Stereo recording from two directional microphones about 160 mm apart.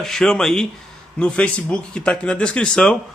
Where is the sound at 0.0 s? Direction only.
5° left (ahead or behind).